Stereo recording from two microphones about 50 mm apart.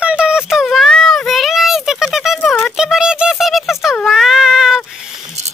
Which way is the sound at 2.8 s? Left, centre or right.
Centre.